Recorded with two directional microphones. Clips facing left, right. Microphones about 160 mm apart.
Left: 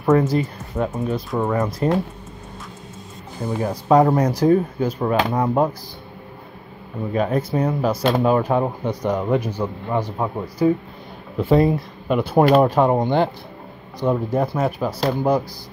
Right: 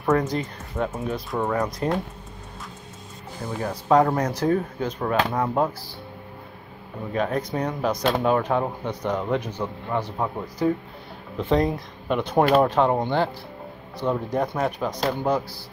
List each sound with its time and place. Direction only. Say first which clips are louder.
0.0 s speech: left 5 dB; 5° left (ahead or behind)
3.5 s speech: left 3 dB; 15° left (ahead or behind)
7.2 s speech: left 4 dB; 5° left (ahead or behind)